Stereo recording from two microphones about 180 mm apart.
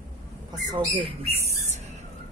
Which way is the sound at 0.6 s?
25° right (ahead or behind).